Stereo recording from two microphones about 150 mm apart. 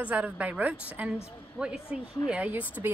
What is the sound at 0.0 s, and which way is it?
A woman's voice, 10° right (ahead or behind).